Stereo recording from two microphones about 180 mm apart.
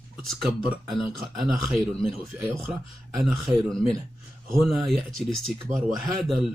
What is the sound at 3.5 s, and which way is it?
Speech, 15° right (ahead or behind).